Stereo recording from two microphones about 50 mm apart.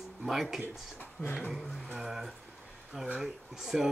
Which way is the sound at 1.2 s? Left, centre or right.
Centre.